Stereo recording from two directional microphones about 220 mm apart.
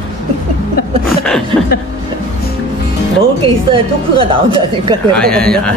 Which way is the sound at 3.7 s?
25° right (ahead or behind).